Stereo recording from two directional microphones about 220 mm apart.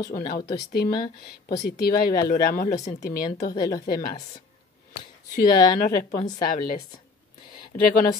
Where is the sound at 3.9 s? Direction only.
40° left (ahead or behind).